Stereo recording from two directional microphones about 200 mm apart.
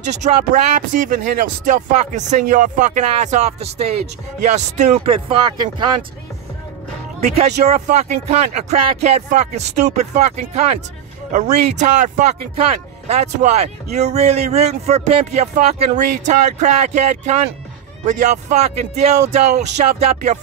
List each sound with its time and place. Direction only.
0.2 s speech: 40° right (ahead or behind); by 5.9 s 20° right (ahead or behind)
7.2 s speech: 30° right (ahead or behind)
13.1 s speech: 35° right (ahead or behind)